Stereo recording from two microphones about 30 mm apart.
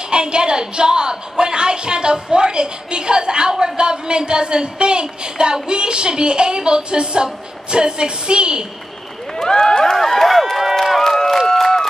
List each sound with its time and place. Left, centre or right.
0.1 s a woman's voice: right
9.4 s speech: left
10.2 s run: centre
10.8 s a sound: centre